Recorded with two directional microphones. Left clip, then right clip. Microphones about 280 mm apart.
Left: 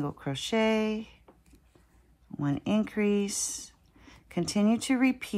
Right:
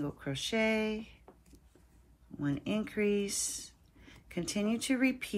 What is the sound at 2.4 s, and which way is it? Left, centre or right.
Speech, left.